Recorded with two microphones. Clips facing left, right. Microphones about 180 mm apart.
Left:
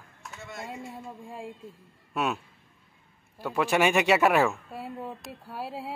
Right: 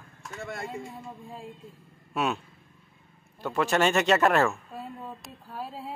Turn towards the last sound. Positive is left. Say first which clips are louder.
# even
turn(degrees=10)  # may be behind; listen again after turning